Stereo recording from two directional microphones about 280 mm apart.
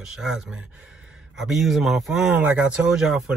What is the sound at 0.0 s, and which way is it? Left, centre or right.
Speech, centre.